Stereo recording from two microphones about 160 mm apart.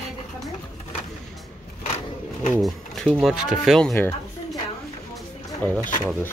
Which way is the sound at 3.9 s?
15° left (ahead or behind).